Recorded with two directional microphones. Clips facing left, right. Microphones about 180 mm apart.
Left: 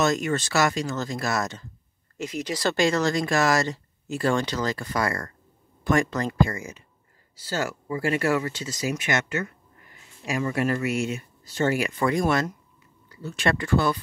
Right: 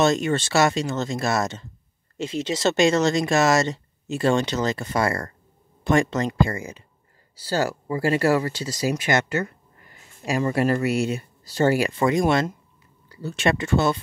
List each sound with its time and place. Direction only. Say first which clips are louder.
0.0 s speech: right 3 dB; 30° right (ahead or behind)
13.5 s speech: right 2 dB; 25° right (ahead or behind)